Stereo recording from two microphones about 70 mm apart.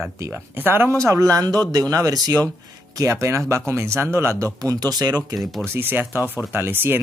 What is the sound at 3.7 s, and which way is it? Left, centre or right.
Speech, right.